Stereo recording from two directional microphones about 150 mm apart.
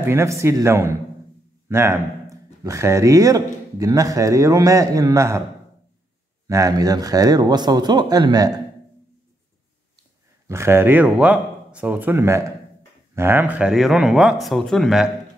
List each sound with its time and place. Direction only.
0.0 s speech: 20° right (ahead or behind)
6.4 s speech: 25° right (ahead or behind)
10.4 s speech: 15° right (ahead or behind); by 15.0 s centre (ahead or behind)